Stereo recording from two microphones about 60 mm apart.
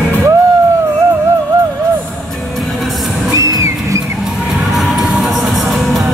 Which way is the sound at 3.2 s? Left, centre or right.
Right.